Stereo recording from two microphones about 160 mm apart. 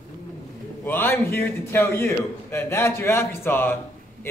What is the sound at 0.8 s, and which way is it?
A man's voice, 15° left (ahead or behind).